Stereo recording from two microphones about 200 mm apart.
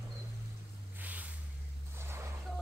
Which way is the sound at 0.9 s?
10° right (ahead or behind).